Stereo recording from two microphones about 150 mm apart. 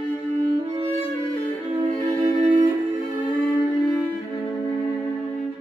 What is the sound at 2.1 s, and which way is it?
Music, 55° right (ahead or behind).